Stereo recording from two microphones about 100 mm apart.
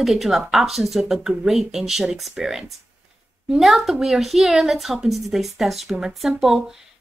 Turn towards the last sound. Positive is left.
turn(degrees=-5)  # may be behind; listen again after turning